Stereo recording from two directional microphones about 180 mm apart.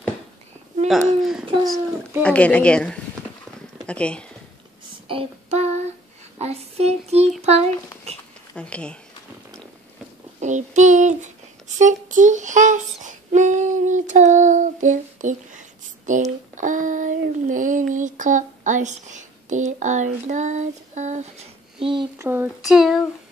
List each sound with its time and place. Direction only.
0.8 s speech: centre (ahead or behind)
1.4 s a sound: 30° right (ahead or behind)
2.2 s a woman's voice: 5° left (ahead or behind)
5.0 s child singing: 30° right (ahead or behind)
6.3 s a sound: 35° right (ahead or behind)
8.5 s a woman's voice: 5° left (ahead or behind)
10.4 s a sound: 40° right (ahead or behind)
11.8 s child singing: 45° right (ahead or behind); by 22.0 s 30° right (ahead or behind)
22.2 s speech: 10° right (ahead or behind)